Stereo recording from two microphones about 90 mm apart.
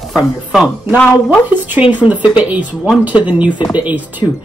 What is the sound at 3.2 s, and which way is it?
Speech, 15° right (ahead or behind).